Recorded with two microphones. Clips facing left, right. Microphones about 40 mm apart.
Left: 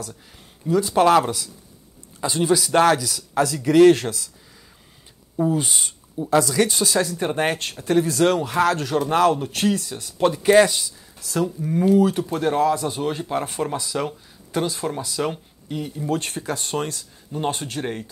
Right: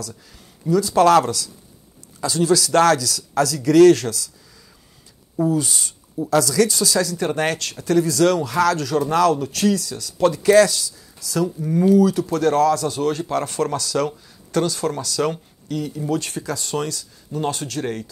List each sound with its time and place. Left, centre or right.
0.7 s speech: left
5.5 s speech: left
11.6 s speech: centre
11.9 s speech: left
12.3 s speech: left
16.1 s speech: left